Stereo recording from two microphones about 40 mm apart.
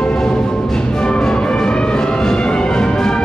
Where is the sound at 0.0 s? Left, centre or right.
Centre.